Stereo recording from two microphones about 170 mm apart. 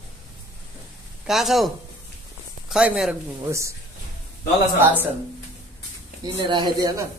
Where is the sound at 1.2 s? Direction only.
Centre (ahead or behind).